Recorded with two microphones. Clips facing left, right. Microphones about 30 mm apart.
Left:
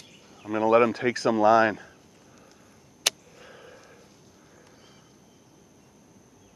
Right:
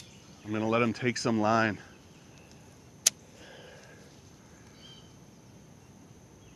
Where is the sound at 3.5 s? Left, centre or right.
Centre.